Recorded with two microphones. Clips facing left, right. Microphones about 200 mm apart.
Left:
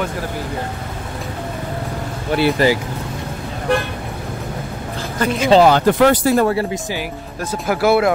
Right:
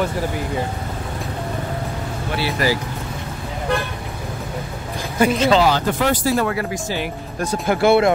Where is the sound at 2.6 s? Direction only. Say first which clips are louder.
Left 3 dB; 30° left (ahead or behind).